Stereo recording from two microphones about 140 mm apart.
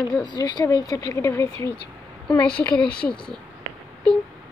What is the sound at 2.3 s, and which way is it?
Speech, 10° left (ahead or behind).